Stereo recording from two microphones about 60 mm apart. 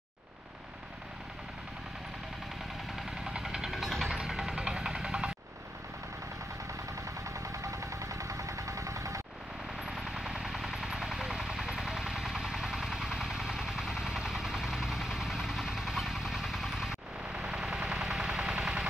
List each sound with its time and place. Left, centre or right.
3.0 s vehicle: centre
4.1 s music: centre
7.2 s vehicle: right
9.8 s vehicle: centre
17.4 s a sound: centre